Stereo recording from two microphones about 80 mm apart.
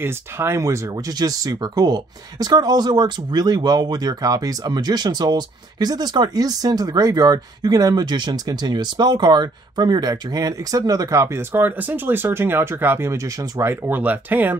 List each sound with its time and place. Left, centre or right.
0.0 s speech: right
13.7 s speech: right